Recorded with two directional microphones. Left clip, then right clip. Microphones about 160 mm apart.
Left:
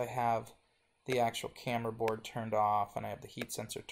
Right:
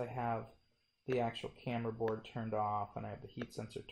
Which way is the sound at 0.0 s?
15° left (ahead or behind).